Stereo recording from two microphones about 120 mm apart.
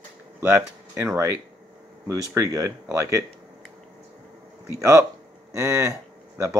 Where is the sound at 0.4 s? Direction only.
20° right (ahead or behind).